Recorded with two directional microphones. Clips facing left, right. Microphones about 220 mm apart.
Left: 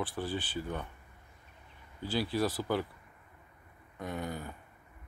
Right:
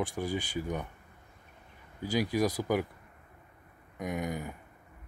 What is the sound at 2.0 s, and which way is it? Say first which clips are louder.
Speech: right 3 dB; 15° right (ahead or behind).